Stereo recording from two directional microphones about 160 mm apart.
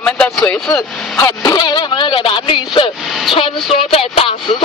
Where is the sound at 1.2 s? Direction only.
25° left (ahead or behind).